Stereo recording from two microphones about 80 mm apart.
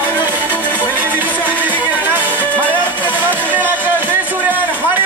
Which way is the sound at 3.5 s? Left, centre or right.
Right.